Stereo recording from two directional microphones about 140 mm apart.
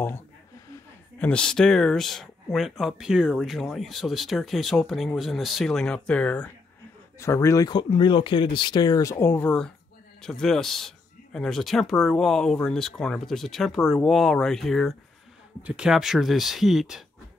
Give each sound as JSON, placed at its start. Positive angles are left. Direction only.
{"t": 1.2, "sound": "speech", "side_deg": 5}
{"t": 7.2, "sound": "speech", "side_deg": 20}
{"t": 7.7, "sound": "speech", "side_deg": 35}